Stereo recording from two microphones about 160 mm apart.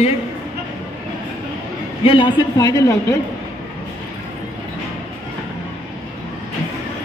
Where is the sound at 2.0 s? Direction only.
30° left (ahead or behind).